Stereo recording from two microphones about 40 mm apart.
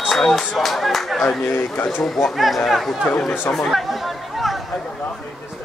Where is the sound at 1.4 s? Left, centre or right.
Left.